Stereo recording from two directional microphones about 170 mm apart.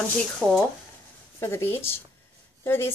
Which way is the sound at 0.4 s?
Centre (ahead or behind).